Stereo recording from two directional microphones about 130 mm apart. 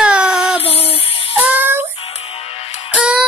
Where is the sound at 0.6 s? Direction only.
50° left (ahead or behind).